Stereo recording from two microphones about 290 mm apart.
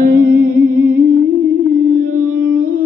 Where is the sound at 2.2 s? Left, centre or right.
Right.